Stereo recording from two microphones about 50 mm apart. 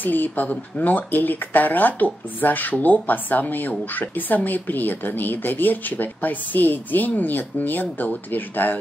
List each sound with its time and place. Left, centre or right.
0.0 s speech: left